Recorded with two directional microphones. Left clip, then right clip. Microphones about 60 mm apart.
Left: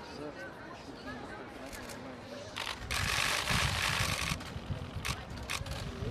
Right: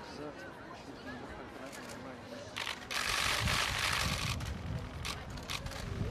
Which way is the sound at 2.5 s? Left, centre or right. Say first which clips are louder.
Left 1 dB; left.